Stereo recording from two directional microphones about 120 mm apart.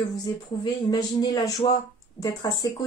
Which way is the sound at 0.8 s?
35° left (ahead or behind).